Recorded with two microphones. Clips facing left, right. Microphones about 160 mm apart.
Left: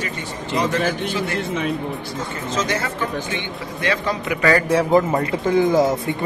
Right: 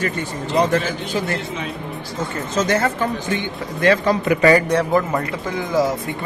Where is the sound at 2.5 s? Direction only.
50° right (ahead or behind).